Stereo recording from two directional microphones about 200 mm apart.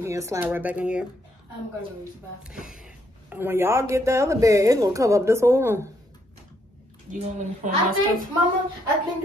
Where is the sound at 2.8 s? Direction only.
10° right (ahead or behind).